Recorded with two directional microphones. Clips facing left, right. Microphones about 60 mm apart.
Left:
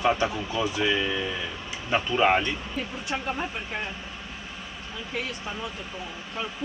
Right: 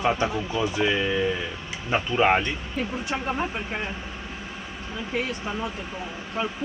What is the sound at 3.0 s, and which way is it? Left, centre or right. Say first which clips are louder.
Speech: right 2 dB; right.